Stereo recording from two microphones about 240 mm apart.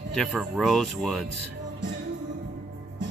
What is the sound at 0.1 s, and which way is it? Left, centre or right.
Speech, centre.